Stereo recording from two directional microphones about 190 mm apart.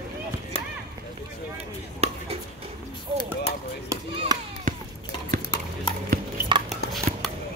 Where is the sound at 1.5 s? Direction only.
30° right (ahead or behind).